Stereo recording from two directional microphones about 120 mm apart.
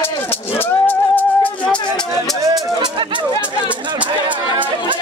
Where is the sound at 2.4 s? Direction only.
35° right (ahead or behind).